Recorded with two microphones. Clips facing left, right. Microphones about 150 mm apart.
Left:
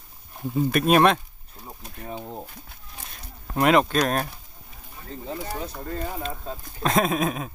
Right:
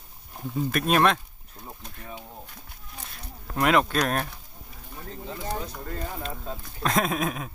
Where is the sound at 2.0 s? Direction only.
35° left (ahead or behind).